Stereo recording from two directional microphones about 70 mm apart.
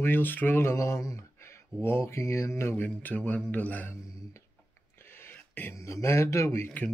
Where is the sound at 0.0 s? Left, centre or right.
Left.